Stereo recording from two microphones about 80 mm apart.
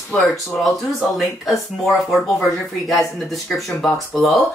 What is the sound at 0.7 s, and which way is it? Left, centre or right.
Speech, centre.